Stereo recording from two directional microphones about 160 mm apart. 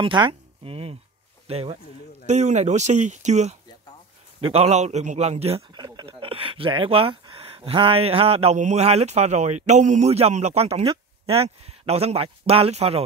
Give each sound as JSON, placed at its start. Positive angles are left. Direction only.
{"t": 0.0, "sound": "a man's voice", "side_deg": -30}